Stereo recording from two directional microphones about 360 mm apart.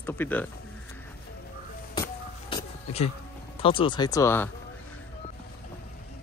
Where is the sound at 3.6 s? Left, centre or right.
Centre.